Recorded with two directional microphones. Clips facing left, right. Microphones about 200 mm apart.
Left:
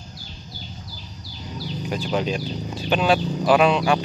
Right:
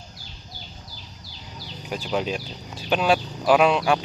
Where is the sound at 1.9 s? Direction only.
5° right (ahead or behind).